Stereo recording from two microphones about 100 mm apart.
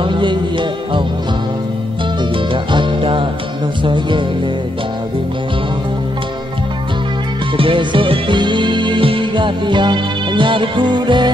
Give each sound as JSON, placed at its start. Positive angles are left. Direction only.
{"t": 0.0, "sound": "music", "side_deg": -55}
{"t": 2.3, "sound": "music", "side_deg": -55}
{"t": 3.8, "sound": "speech", "side_deg": -55}
{"t": 7.5, "sound": "music", "side_deg": -60}